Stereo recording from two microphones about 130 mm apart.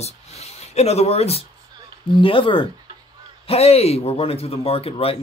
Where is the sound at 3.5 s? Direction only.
55° left (ahead or behind).